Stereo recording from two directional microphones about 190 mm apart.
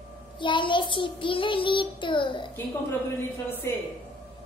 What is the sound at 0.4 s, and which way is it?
A child's voice, 25° left (ahead or behind).